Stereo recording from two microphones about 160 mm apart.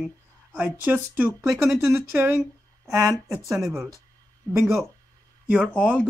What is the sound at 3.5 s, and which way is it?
Speech, centre (ahead or behind).